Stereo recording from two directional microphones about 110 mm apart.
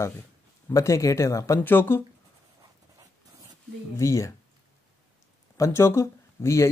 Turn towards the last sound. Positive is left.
turn(degrees=25)  # may be behind; listen again after turning